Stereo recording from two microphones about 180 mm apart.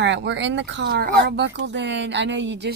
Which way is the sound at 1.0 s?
65° right (ahead or behind).